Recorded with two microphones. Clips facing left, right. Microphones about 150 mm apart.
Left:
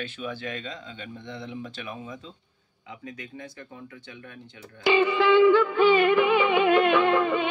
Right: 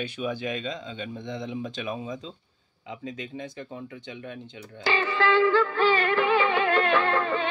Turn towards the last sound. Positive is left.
turn(degrees=15)  # may be behind; listen again after turning